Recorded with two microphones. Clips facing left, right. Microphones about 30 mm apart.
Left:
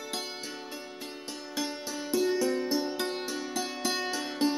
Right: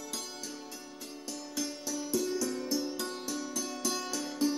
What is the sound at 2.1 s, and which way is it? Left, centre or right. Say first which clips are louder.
Music: left 6 dB; left.